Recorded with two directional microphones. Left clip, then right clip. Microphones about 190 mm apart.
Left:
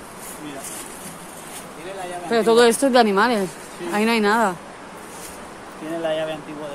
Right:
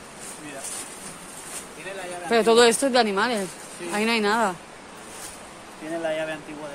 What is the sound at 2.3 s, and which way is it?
Speech, 25° right (ahead or behind).